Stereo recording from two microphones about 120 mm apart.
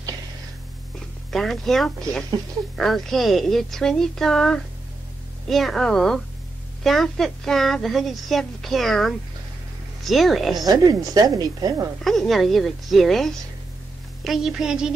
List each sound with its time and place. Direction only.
1.3 s a woman's voice: centre (ahead or behind)
10.6 s a woman's voice: 30° right (ahead or behind)
12.0 s a woman's voice: centre (ahead or behind)